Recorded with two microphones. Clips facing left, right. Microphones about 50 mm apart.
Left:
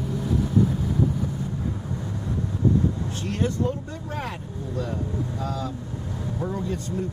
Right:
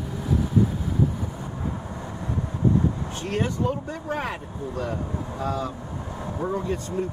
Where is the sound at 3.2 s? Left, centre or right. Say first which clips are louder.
Right 1 dB; right.